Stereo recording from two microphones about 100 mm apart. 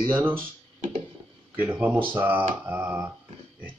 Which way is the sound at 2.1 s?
20° right (ahead or behind).